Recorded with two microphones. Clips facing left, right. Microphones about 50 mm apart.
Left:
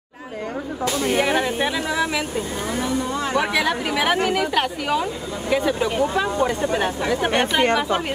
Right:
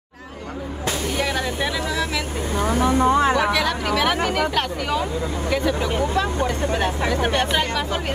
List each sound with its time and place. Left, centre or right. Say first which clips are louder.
1.0 s speech: left 5 dB; left
2.6 s speech: right 8 dB; right
3.5 s speech: even; centre